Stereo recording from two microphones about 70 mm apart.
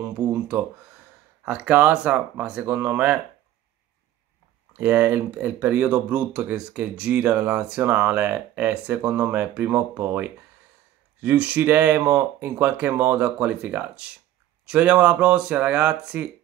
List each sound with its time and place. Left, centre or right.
1.4 s speech: centre
4.7 s speech: right
11.2 s speech: right